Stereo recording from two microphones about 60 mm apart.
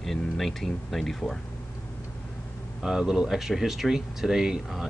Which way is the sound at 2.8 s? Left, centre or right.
Centre.